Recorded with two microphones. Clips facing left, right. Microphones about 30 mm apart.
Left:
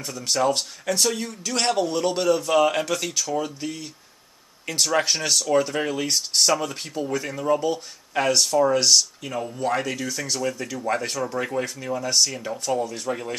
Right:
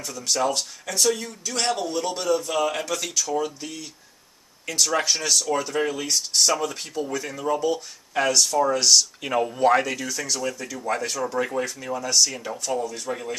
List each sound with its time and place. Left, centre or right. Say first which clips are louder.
0.0 s a man's voice: left 2 dB; centre
2.9 s speech: left 1 dB; centre
9.2 s speech: right 6 dB; right
9.8 s speech: right 3 dB; centre
10.0 s speech: left 1 dB; centre
11.3 s speech: right 1 dB; centre